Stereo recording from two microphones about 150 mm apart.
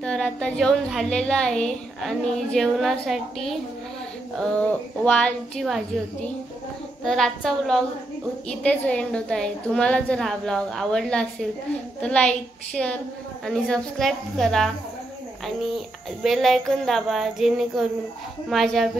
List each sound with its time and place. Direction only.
0.0 s a woman's voice: 5° left (ahead or behind)
4.6 s a woman's voice: 10° left (ahead or behind)
7.1 s a woman's voice: 5° left (ahead or behind)
16.2 s a woman's voice: centre (ahead or behind)